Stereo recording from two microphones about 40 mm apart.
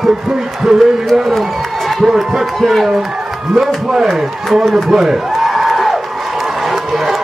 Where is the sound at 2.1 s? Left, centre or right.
Centre.